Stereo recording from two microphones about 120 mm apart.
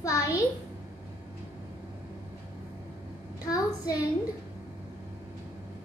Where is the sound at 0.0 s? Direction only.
25° left (ahead or behind).